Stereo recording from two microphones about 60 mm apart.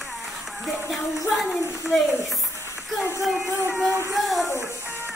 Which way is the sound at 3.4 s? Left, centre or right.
Left.